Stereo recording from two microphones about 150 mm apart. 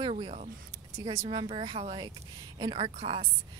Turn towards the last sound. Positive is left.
turn(degrees=-40)  # may be behind; listen again after turning